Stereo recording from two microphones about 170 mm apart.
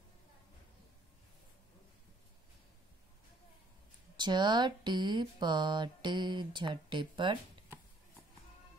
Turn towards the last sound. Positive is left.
turn(degrees=-30)  # may be behind; listen again after turning